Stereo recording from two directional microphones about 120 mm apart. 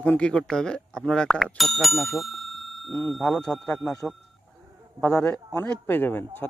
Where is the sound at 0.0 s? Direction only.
10° left (ahead or behind).